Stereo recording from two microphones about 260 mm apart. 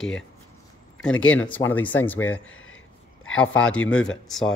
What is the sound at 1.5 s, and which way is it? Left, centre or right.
Speech, centre.